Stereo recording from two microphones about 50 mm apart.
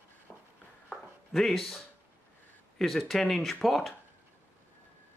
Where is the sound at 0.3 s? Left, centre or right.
Left.